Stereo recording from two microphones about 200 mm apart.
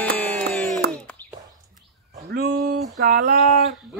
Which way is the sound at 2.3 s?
50° right (ahead or behind).